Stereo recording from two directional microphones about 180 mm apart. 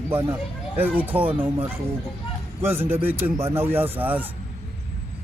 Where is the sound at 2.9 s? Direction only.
10° right (ahead or behind).